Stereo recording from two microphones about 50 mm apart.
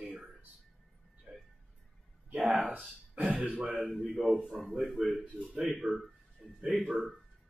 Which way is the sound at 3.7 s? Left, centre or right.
Centre.